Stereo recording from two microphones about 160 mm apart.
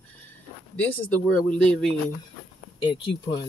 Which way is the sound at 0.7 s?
10° left (ahead or behind).